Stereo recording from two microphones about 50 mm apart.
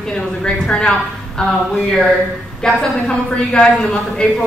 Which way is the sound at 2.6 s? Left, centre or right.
Centre.